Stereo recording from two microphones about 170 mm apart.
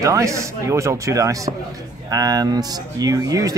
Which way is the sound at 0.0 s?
20° right (ahead or behind).